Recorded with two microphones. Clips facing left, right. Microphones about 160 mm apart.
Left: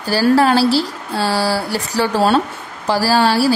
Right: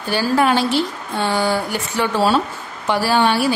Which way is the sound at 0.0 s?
35° left (ahead or behind).